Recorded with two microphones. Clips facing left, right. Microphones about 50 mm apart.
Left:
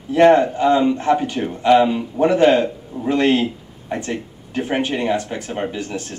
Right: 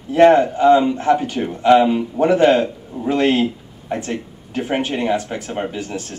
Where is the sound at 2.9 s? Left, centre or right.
Centre.